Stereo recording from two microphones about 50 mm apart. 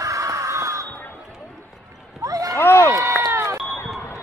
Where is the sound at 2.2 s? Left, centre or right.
Right.